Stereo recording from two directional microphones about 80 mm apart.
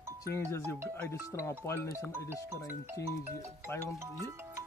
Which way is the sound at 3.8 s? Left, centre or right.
Right.